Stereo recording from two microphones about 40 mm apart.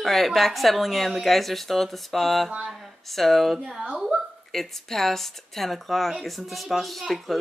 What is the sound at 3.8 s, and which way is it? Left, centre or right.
Speech, right.